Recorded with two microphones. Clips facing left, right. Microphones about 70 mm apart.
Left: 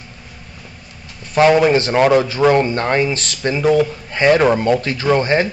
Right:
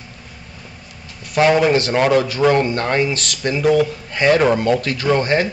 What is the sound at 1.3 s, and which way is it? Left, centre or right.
Speech, left.